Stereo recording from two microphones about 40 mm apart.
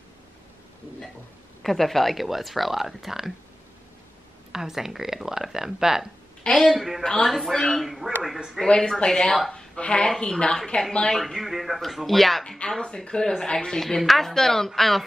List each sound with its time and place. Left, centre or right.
1.6 s speech: centre
4.5 s speech: centre
7.0 s speech: left
7.2 s speech: centre
8.6 s speech: centre
11.1 s speech: centre
12.7 s speech: centre
13.7 s speech: centre